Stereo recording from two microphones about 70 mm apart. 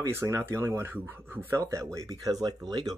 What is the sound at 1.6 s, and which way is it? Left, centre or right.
Speech, right.